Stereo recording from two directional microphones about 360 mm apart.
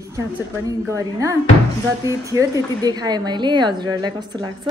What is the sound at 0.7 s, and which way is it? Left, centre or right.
Speech, centre.